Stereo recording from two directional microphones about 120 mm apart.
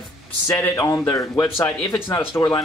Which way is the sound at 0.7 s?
30° left (ahead or behind).